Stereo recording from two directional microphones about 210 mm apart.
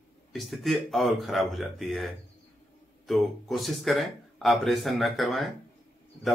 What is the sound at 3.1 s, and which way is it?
Speech, centre (ahead or behind).